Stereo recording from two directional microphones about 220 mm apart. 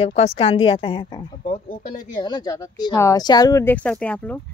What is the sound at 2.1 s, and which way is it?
Speech, 20° left (ahead or behind).